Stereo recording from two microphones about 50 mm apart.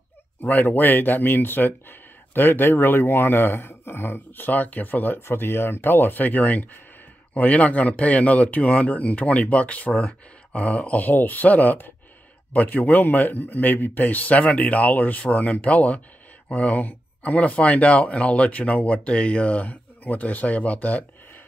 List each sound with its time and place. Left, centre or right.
0.4 s speech: left
4.5 s a man's voice: left
5.2 s a man's voice: left